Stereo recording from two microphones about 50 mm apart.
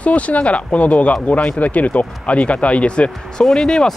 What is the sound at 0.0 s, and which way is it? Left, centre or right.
Speech, left.